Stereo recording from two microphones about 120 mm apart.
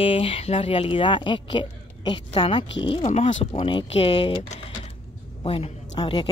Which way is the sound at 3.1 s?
65° left (ahead or behind).